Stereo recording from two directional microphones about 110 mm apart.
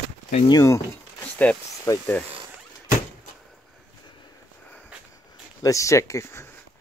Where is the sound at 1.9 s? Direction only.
35° left (ahead or behind).